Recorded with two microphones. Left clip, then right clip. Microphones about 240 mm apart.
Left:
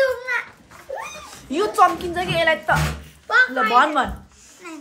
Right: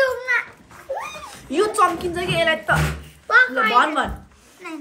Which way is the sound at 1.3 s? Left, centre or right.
Left.